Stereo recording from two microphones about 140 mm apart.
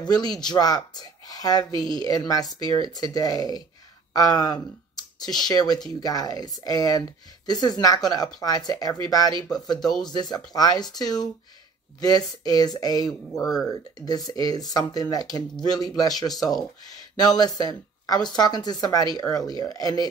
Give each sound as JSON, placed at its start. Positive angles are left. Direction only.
{"t": 0.0, "sound": "speech", "side_deg": 30}